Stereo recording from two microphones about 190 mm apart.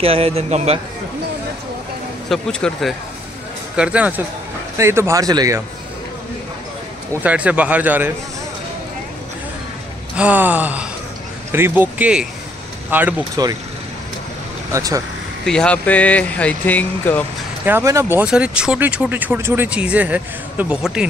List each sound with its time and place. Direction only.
0.0 s a man's voice: 30° right (ahead or behind)
2.2 s speech: centre (ahead or behind); by 5.6 s 20° right (ahead or behind)
7.2 s speech: 5° right (ahead or behind)
10.1 s speech: 10° right (ahead or behind)
14.7 s speech: 20° right (ahead or behind)
15.4 s speech: 5° left (ahead or behind)
17.6 s speech: 15° right (ahead or behind)